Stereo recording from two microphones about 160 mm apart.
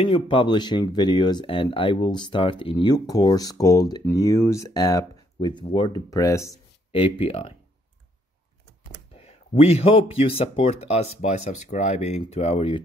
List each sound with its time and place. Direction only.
0.0 s speech: 35° left (ahead or behind)
6.9 s speech: 35° left (ahead or behind)
9.2 s speech: 40° left (ahead or behind)